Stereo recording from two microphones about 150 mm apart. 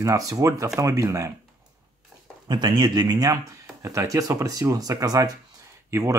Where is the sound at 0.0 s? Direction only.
20° right (ahead or behind).